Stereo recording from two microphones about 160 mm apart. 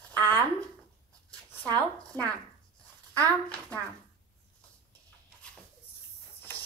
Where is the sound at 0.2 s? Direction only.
15° left (ahead or behind).